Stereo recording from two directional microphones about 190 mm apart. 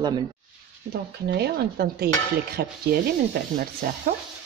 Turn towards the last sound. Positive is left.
turn(degrees=-50)  # may be behind; listen again after turning